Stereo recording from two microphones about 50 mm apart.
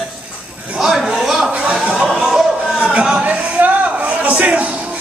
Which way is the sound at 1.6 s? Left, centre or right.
Right.